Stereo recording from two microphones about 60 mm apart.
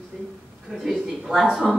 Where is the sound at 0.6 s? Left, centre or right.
Centre.